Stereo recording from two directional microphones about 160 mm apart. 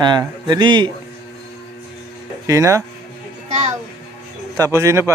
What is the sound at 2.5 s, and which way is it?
Speech, 20° right (ahead or behind).